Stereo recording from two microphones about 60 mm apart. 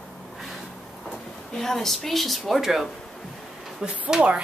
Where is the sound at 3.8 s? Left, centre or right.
Right.